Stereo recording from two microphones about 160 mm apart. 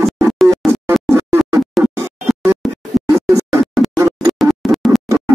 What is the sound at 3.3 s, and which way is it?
Music, 20° right (ahead or behind).